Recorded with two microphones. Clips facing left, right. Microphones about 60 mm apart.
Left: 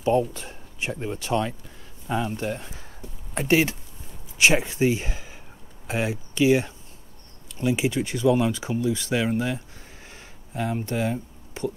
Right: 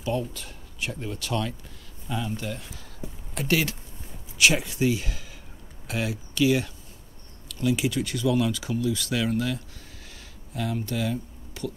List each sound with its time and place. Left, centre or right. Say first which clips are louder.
0.0 s speech: left 7 dB; left